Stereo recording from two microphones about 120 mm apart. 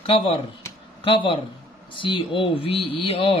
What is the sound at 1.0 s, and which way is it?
Speech, 45° left (ahead or behind).